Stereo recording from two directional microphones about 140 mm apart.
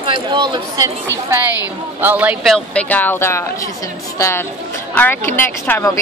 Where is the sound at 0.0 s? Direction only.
35° right (ahead or behind); by 2.3 s 10° right (ahead or behind).